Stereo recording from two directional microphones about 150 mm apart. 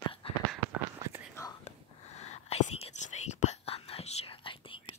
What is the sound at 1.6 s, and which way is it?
Whispering, 50° left (ahead or behind).